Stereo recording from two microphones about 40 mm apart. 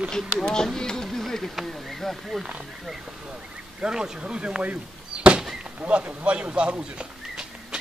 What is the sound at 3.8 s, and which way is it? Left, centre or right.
Speech, right.